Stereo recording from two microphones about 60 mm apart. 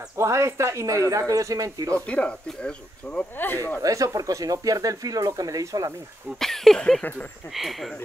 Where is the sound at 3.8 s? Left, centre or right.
Right.